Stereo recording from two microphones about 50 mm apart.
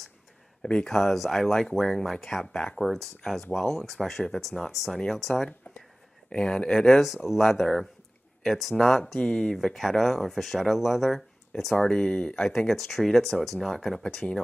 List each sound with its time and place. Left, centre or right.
0.6 s speech: centre
0.8 s speech: centre
4.9 s speech: centre
6.3 s speech: centre
7.2 s speech: centre
8.5 s speech: centre
11.7 s speech: centre
14.0 s speech: centre